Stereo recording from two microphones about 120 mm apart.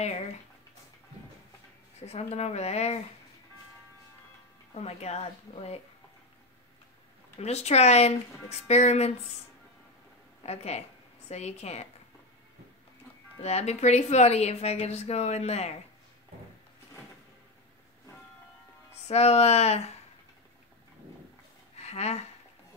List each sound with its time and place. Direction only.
0.0 s speech: 65° left (ahead or behind)
2.0 s speech: 65° left (ahead or behind)
4.7 s speech: 60° left (ahead or behind)
7.3 s speech: 65° left (ahead or behind)
10.4 s speech: 60° left (ahead or behind)
13.4 s speech: 65° left (ahead or behind)
19.0 s speech: 60° left (ahead or behind)
21.7 s a sound: 65° left (ahead or behind)